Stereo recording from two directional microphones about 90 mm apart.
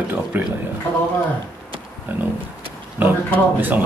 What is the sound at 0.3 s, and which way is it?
Speech, 20° right (ahead or behind).